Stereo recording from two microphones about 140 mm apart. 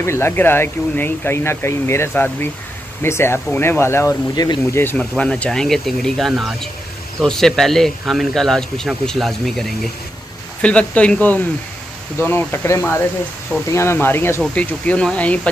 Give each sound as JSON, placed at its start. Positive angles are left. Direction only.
{"t": 0.0, "sound": "speech", "side_deg": 20}